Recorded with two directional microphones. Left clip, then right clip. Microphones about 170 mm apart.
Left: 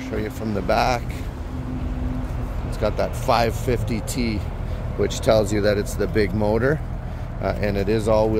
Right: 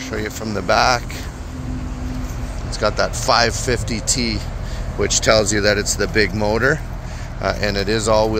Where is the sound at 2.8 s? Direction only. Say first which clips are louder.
Right 5 dB; centre (ahead or behind).